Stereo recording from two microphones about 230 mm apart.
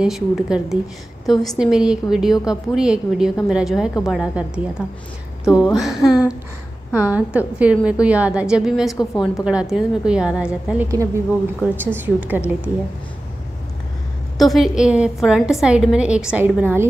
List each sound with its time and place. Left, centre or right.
0.0 s a woman's voice: centre
5.5 s a woman's voice: centre
8.9 s a woman's voice: centre
9.4 s a woman's voice: centre
14.4 s a woman's voice: centre